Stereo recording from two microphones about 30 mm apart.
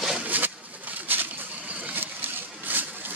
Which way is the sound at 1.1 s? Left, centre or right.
Right.